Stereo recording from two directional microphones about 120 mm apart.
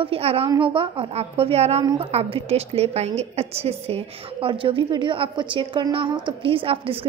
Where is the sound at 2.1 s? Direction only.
60° right (ahead or behind).